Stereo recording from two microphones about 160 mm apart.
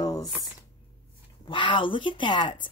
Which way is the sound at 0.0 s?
20° left (ahead or behind).